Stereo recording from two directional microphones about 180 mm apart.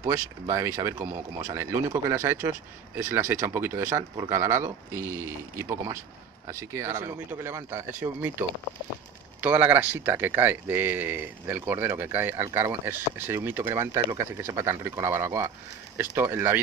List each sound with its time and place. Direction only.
0.0 s speech: 15° right (ahead or behind)